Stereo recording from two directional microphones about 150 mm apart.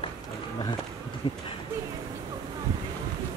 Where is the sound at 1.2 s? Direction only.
35° left (ahead or behind).